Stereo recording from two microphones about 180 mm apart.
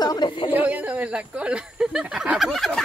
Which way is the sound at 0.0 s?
25° left (ahead or behind).